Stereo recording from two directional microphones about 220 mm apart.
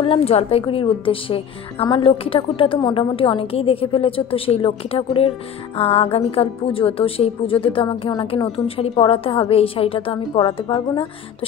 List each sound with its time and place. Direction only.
0.0 s a woman's voice: 25° left (ahead or behind)